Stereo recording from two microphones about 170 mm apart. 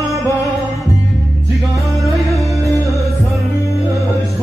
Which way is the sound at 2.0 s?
Centre (ahead or behind).